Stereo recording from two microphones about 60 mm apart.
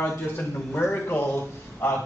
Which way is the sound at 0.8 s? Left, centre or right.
Left.